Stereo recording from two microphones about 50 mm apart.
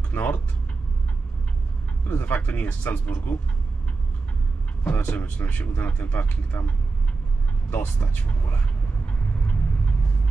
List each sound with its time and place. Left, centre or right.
0.1 s speech: left
2.0 s speech: left
4.8 s speech: left
7.7 s speech: left